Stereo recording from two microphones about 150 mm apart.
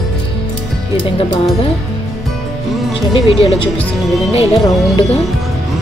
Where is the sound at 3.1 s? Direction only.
40° left (ahead or behind).